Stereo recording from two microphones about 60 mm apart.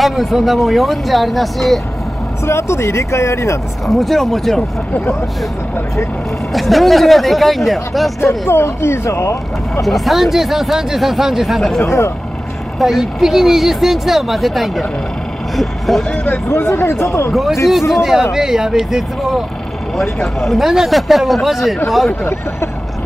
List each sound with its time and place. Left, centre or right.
0.0 s speech: centre
2.4 s speech: left
3.8 s speech: centre
6.5 s speech: centre
8.2 s speech: left
9.8 s speech: centre
11.8 s speech: left
12.7 s speech: centre
16.4 s speech: left
17.0 s speech: left
17.3 s speech: centre